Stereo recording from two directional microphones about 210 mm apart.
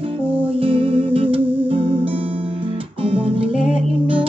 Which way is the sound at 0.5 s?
25° right (ahead or behind).